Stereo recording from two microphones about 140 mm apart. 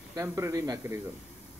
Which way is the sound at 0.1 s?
20° right (ahead or behind).